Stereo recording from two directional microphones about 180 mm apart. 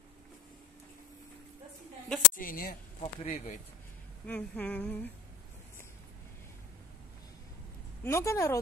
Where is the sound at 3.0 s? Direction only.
35° left (ahead or behind).